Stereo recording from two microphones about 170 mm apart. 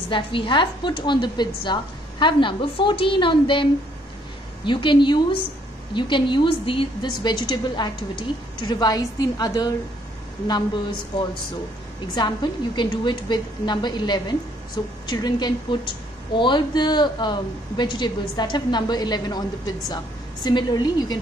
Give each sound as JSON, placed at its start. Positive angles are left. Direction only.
{"t": 0.1, "sound": "a woman's voice", "side_deg": 30}
{"t": 4.6, "sound": "a woman's voice", "side_deg": 30}
{"t": 12.2, "sound": "a woman's voice", "side_deg": 25}